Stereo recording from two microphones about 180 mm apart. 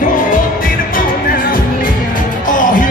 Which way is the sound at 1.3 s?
50° left (ahead or behind).